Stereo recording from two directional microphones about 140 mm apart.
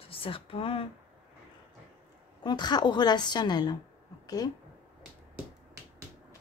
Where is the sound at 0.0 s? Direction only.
40° left (ahead or behind).